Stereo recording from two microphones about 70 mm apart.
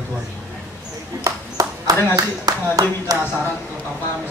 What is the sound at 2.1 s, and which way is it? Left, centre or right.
Speech, right.